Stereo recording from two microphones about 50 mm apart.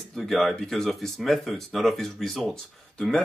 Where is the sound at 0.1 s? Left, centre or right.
Centre.